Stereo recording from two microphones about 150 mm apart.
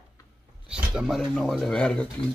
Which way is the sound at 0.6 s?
5° right (ahead or behind).